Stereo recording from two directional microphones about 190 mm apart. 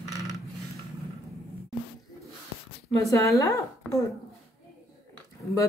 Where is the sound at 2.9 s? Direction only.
15° left (ahead or behind).